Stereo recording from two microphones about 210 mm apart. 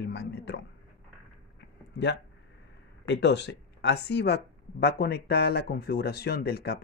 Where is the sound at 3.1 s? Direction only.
55° left (ahead or behind).